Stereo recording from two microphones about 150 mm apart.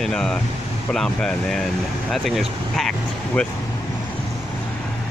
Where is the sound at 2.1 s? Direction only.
Centre (ahead or behind).